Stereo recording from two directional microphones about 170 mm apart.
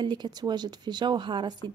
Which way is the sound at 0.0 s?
25° right (ahead or behind).